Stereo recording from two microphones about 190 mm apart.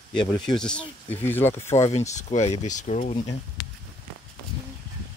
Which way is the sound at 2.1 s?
40° left (ahead or behind).